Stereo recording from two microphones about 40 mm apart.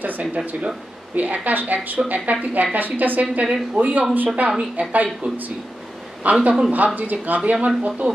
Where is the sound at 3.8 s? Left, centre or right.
Right.